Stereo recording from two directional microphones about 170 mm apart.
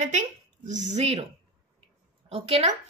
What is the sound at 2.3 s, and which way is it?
Speech, 40° right (ahead or behind).